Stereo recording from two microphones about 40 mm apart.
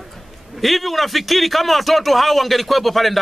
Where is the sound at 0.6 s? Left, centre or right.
Centre.